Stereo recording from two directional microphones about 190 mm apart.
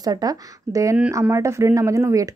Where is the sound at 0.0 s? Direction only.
20° right (ahead or behind).